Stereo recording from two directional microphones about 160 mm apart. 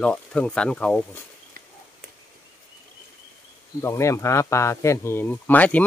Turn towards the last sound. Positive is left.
turn(degrees=10)  # may be behind; listen again after turning